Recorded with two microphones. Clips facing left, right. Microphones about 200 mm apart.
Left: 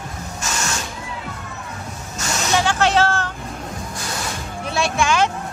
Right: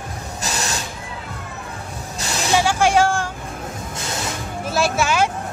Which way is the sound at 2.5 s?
10° right (ahead or behind).